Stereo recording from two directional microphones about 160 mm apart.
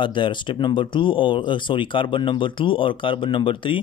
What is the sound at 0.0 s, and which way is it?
Speech, 30° left (ahead or behind).